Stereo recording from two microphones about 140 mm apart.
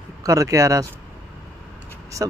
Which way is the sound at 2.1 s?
25° right (ahead or behind).